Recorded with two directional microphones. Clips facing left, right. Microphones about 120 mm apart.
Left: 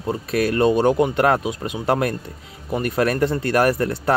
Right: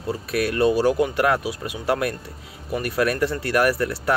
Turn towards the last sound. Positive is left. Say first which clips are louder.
# left 2 dB
turn(degrees=30)  # may be behind; listen again after turning